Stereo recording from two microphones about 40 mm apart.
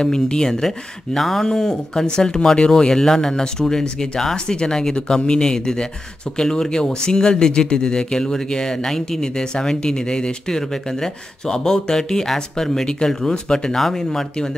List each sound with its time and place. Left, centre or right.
0.0 s speech: centre
13.7 s speech: centre